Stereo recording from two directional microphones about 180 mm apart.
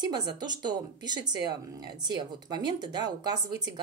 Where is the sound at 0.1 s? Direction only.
25° right (ahead or behind).